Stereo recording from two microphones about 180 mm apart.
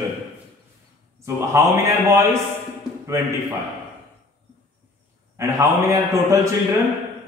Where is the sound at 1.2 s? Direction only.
15° right (ahead or behind).